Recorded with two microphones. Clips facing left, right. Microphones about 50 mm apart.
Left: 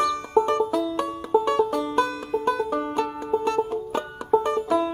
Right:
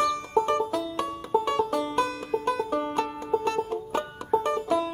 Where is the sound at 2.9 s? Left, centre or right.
Centre.